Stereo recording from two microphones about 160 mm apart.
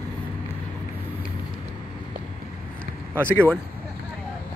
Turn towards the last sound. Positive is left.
turn(degrees=10)  # may be behind; listen again after turning